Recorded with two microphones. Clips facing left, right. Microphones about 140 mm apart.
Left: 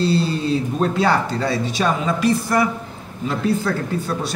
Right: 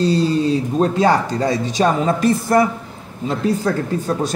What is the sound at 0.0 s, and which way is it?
Speech, 40° right (ahead or behind).